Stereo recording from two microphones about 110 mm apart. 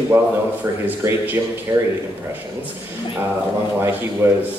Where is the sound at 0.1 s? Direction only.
20° right (ahead or behind).